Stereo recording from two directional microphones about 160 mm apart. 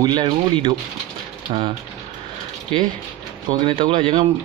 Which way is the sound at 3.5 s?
30° right (ahead or behind).